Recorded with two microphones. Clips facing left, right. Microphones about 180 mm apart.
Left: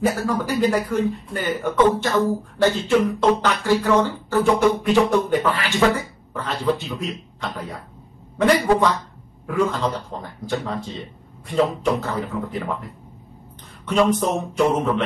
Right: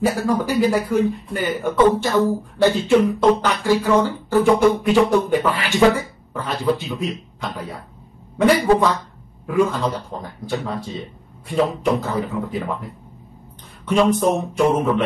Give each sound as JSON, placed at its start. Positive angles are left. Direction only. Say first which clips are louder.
{"t": 0.0, "sound": "speech", "louder": "right 2 dB", "side_deg": -10}
{"t": 13.8, "sound": "speech", "louder": "right 2 dB", "side_deg": -10}